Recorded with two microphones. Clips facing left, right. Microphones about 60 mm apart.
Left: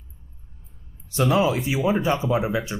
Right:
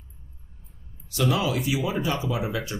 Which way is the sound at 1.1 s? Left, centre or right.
Left.